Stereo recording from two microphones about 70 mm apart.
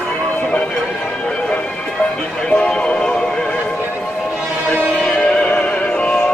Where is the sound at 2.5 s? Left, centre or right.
Centre.